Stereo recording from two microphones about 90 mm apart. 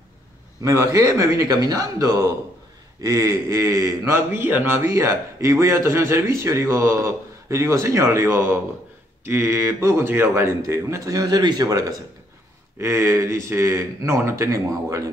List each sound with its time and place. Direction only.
0.6 s a man's voice: 35° right (ahead or behind)
4.8 s a man's voice: 35° right (ahead or behind)
12.7 s a man's voice: 30° right (ahead or behind)